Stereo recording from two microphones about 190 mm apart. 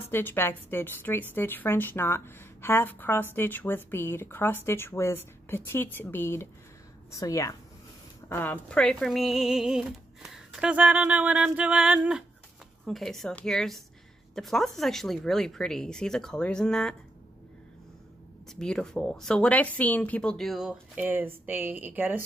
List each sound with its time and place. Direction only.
0.0 s a woman's voice: 10° left (ahead or behind)
18.5 s a woman's voice: 5° left (ahead or behind)